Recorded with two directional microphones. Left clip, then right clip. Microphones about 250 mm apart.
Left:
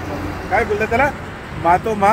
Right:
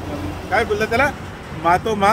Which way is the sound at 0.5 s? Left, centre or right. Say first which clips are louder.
Left 1 dB; centre.